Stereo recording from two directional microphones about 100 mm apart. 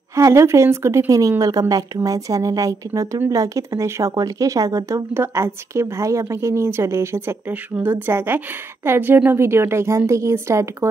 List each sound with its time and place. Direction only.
0.1 s speech: 30° right (ahead or behind)